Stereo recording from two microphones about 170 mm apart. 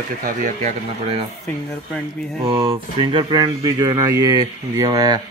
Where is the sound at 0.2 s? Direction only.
50° right (ahead or behind).